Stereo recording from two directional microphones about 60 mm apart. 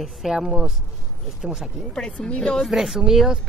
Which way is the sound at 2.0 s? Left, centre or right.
Centre.